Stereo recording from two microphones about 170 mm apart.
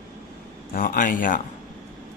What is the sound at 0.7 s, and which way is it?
Speech, 55° left (ahead or behind).